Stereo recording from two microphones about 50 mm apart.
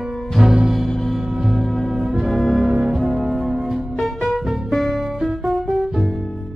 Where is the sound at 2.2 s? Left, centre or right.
Centre.